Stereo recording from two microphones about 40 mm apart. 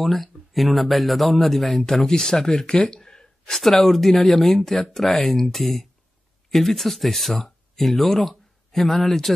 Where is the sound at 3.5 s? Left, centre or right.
Centre.